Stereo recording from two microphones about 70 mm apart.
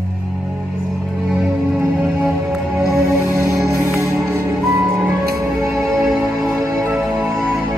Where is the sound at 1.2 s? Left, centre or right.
Centre.